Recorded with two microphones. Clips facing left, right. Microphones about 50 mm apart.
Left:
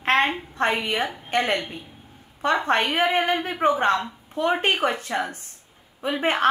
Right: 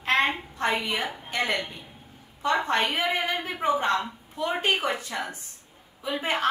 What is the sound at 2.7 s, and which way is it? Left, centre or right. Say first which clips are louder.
A woman's voice: left 4 dB; left.